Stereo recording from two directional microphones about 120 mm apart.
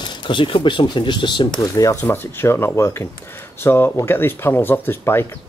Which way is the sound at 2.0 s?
20° left (ahead or behind).